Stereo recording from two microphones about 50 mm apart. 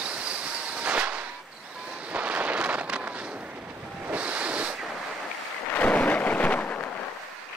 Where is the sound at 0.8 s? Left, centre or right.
Right.